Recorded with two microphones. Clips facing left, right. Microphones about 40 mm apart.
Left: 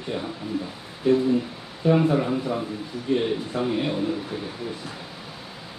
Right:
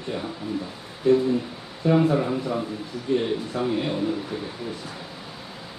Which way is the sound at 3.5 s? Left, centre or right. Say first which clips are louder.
Even; left.